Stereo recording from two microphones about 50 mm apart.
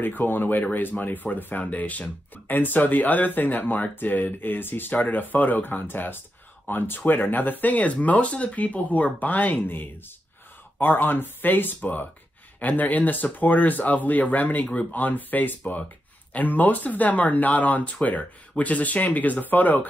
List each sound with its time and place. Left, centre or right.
0.0 s speech: left